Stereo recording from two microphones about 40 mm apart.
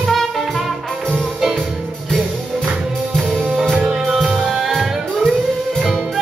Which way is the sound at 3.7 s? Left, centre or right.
Centre.